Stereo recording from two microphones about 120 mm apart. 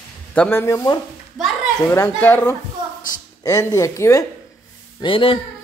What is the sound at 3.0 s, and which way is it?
Speech, 25° left (ahead or behind).